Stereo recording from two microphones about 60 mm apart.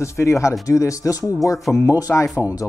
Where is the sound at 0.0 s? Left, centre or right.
Left.